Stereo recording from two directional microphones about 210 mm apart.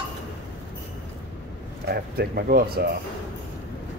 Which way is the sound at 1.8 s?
50° right (ahead or behind).